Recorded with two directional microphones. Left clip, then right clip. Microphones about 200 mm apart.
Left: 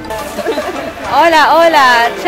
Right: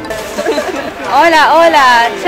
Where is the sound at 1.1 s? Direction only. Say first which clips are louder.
Right 1 dB; 10° left (ahead or behind).